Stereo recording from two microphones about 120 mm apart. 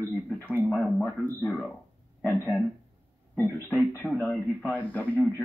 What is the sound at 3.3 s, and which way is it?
Speech, 10° left (ahead or behind).